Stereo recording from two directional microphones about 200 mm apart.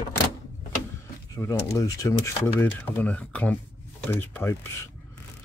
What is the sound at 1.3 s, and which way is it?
Speech, 15° left (ahead or behind).